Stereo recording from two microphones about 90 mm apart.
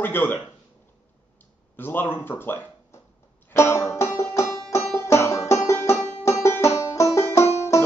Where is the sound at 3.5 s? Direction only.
30° left (ahead or behind).